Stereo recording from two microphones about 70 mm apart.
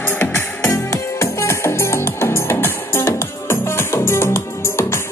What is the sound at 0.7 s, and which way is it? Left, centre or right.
Music, left.